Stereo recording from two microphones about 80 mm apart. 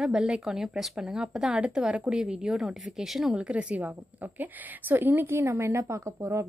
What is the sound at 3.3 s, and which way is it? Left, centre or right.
A woman's voice, centre.